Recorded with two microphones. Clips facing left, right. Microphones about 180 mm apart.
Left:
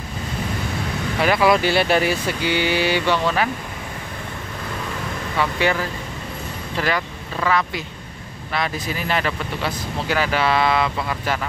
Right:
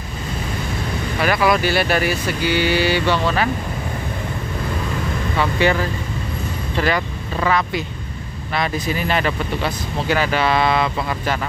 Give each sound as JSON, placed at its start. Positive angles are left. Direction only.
{"t": 1.2, "sound": "speech", "side_deg": 20}
{"t": 5.4, "sound": "speech", "side_deg": 5}
{"t": 7.3, "sound": "speech", "side_deg": 0}
{"t": 9.1, "sound": "speech", "side_deg": 0}